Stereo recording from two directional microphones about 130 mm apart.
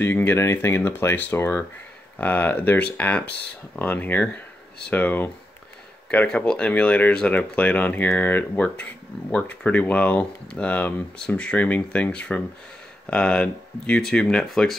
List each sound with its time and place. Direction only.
0.0 s speech: 15° left (ahead or behind)